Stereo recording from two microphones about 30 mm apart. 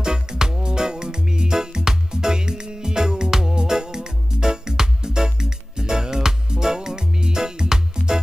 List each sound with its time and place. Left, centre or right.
0.0 s music: right